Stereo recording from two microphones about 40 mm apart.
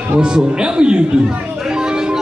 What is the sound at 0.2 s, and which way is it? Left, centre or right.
Speech, right.